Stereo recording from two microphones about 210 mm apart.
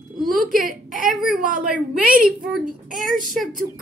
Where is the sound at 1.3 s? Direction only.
40° right (ahead or behind).